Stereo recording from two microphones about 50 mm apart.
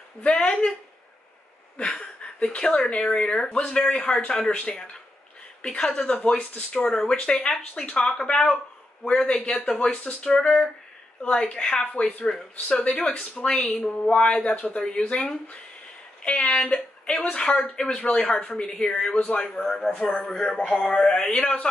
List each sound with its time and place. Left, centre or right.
0.2 s speech: centre
1.8 s speech: centre
9.6 s speech: left
10.2 s speech: centre